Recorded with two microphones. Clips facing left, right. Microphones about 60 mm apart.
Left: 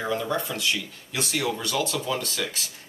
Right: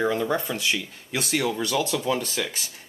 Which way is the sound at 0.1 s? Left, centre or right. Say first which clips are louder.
Right 2 dB; right.